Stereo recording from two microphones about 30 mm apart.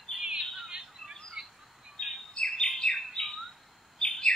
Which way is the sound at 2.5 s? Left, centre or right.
Left.